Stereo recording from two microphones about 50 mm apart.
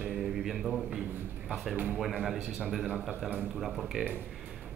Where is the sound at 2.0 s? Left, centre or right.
Centre.